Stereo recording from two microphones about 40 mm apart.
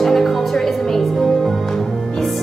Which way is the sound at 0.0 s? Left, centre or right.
Centre.